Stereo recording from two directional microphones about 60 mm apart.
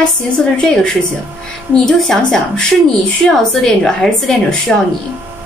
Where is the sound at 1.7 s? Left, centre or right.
Centre.